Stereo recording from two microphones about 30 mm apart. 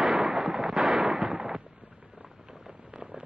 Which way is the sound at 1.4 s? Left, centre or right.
Right.